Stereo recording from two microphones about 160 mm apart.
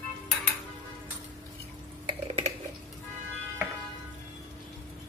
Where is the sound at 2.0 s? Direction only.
40° right (ahead or behind).